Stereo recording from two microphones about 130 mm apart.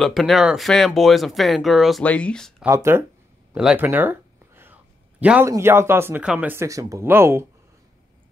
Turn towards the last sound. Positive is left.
turn(degrees=-20)  # may be behind; listen again after turning